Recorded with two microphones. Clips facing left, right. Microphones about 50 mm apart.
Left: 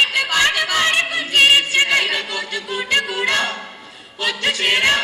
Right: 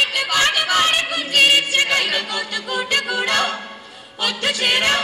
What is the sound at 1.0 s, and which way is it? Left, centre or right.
Choir, left.